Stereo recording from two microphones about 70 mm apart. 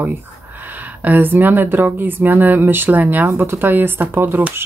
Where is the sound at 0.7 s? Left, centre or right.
Right.